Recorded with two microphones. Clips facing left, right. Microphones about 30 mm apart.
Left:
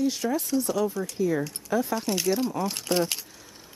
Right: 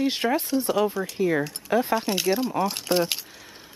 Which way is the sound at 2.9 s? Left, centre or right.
Centre.